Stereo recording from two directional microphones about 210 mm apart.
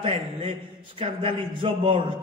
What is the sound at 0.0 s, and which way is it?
A man's voice, 25° right (ahead or behind).